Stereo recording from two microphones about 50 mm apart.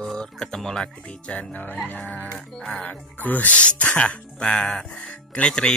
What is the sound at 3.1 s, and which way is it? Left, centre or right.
Speech, left.